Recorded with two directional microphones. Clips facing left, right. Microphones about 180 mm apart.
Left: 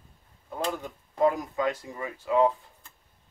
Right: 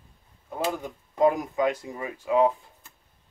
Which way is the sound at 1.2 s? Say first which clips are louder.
Right 3 dB; 15° right (ahead or behind).